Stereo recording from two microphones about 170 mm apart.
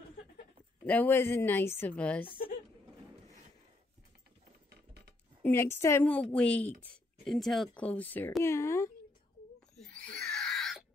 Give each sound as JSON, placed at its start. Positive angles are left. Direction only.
{"t": 0.8, "sound": "speech", "side_deg": 10}
{"t": 5.4, "sound": "speech", "side_deg": 15}
{"t": 9.8, "sound": "a sound", "side_deg": 5}